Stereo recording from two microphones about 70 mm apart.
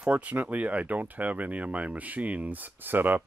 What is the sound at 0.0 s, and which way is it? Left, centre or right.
Speech, right.